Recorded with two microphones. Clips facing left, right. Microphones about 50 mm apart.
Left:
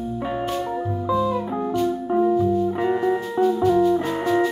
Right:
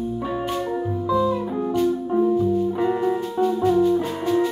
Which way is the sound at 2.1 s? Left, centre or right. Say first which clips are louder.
Left 3 dB; left.